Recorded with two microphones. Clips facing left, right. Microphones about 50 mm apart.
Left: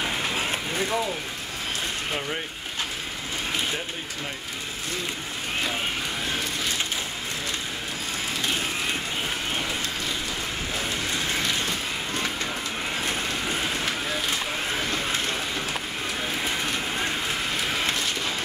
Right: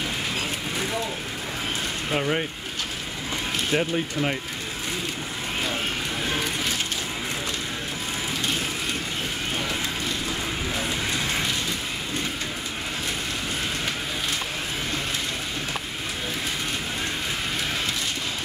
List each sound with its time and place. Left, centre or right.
2.1 s speech: centre
3.7 s speech: right